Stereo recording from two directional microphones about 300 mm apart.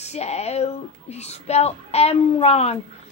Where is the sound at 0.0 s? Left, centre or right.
Left.